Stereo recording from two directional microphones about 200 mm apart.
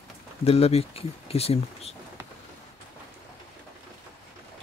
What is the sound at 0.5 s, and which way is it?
Speech, 30° left (ahead or behind).